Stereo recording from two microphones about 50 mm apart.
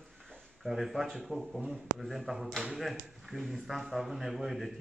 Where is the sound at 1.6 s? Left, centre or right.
Centre.